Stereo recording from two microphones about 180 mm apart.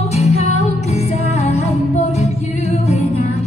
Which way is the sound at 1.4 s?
35° left (ahead or behind).